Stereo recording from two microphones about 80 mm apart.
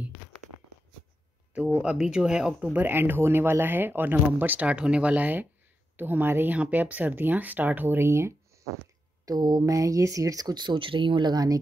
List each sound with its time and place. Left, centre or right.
1.5 s speech: centre
2.7 s speech: right
9.2 s speech: right